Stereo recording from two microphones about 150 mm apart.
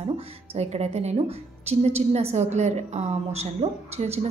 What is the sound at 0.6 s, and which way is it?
A woman's voice, 45° right (ahead or behind).